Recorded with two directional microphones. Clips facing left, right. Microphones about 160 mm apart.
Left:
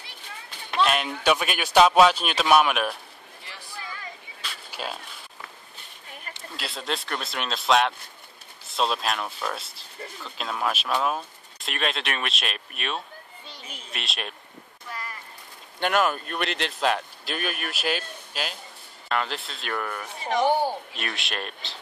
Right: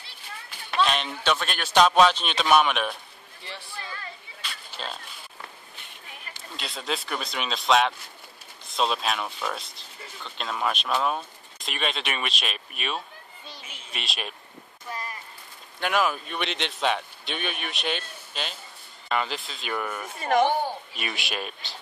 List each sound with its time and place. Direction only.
0.8 s speech: 5° left (ahead or behind)
4.4 s a sound: 10° left (ahead or behind)
6.5 s speech: centre (ahead or behind)
13.6 s a sound: 35° left (ahead or behind)
13.9 s speech: centre (ahead or behind)
14.9 s a sound: 20° right (ahead or behind)
15.8 s speech: centre (ahead or behind)
20.2 s speech: 55° right (ahead or behind)
20.9 s speech: 5° right (ahead or behind)